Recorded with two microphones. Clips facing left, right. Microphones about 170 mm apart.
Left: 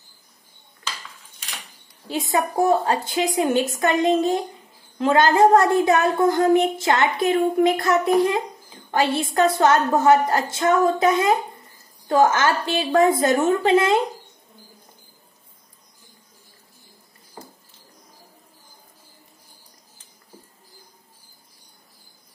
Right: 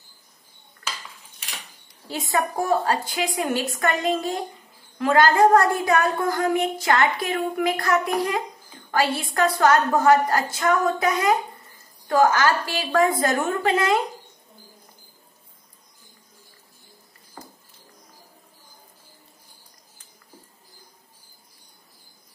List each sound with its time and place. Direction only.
2.0 s a woman's voice: 20° left (ahead or behind)